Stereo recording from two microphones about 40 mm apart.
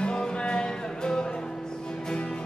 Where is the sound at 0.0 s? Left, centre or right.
Left.